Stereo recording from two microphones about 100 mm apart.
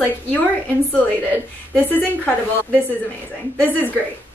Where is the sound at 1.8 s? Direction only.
20° left (ahead or behind).